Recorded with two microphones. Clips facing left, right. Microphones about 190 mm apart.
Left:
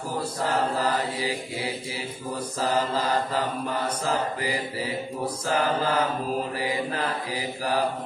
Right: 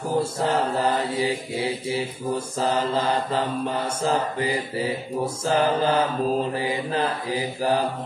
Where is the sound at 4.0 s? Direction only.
25° right (ahead or behind).